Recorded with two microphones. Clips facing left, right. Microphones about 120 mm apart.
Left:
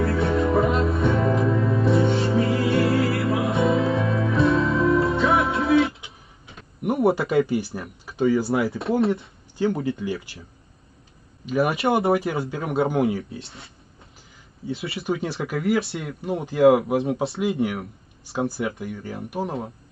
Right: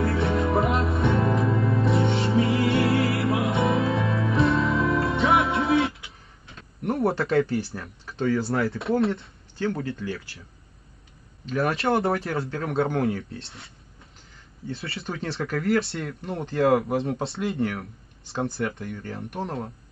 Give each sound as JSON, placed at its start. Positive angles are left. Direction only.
{"t": 0.2, "sound": "music", "side_deg": 0}
{"t": 5.5, "sound": "music", "side_deg": -25}
{"t": 6.5, "sound": "speech", "side_deg": 5}
{"t": 9.6, "sound": "speech", "side_deg": 15}
{"t": 11.4, "sound": "speech", "side_deg": 10}
{"t": 14.7, "sound": "speech", "side_deg": 5}